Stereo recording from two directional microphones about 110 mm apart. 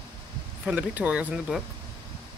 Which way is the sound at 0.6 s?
10° right (ahead or behind).